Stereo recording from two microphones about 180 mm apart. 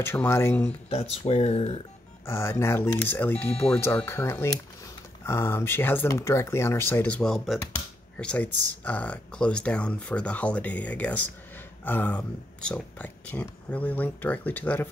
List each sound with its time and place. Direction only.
0.0 s speech: 10° left (ahead or behind)
0.8 s speech: 35° left (ahead or behind)
2.2 s speech: 15° left (ahead or behind)